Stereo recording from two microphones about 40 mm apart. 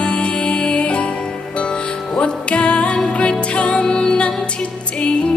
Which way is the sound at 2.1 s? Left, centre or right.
Left.